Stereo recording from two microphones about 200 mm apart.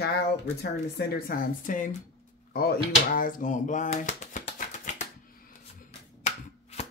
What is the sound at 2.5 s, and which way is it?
Drawer open or close, 50° left (ahead or behind).